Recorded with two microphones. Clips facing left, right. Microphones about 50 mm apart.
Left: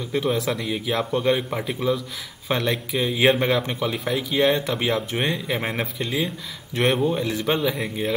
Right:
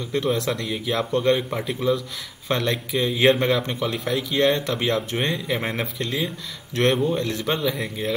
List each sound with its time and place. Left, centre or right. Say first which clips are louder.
0.1 s a man's voice: even; centre